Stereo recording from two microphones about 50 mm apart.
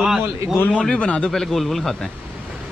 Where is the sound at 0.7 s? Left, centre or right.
Left.